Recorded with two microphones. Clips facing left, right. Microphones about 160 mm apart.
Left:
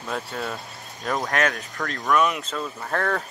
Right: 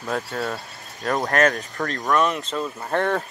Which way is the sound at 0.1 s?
Centre (ahead or behind).